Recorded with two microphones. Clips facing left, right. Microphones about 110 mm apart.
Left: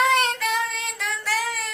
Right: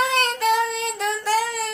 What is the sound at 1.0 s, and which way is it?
Child singing, 40° right (ahead or behind).